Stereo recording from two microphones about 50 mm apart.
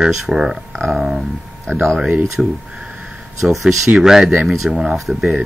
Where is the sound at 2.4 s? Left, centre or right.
Right.